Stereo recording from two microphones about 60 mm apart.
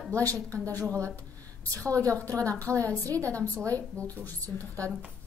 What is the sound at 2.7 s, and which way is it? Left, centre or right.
Speech, right.